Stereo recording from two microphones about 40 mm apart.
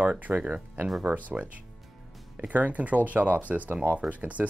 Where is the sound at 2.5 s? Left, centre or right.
Right.